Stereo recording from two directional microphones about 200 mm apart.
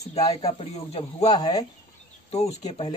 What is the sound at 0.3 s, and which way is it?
Speech, 30° left (ahead or behind).